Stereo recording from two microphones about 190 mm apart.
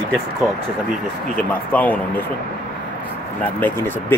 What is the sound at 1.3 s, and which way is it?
Speech, 10° left (ahead or behind).